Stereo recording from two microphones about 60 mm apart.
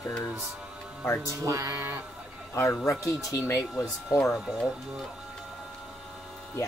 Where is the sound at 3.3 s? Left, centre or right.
Left.